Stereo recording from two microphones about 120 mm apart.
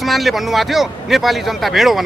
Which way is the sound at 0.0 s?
Centre (ahead or behind).